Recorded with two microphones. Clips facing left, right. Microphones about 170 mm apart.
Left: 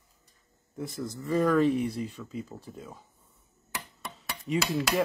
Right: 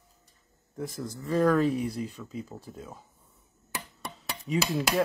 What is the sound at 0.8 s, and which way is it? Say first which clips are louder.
Speech: left 1 dB; centre (ahead or behind).